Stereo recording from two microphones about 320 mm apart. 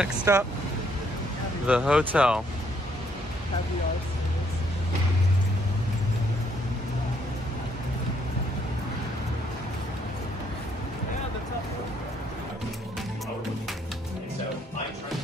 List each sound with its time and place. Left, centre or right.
0.0 s speech: centre
1.7 s speech: centre